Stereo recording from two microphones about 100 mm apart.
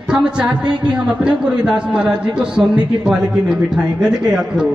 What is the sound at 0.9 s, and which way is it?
A man's voice, 10° right (ahead or behind).